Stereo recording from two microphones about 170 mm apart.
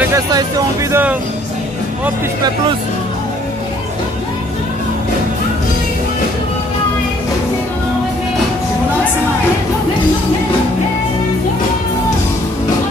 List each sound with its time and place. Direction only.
0.0 s speech: 20° right (ahead or behind)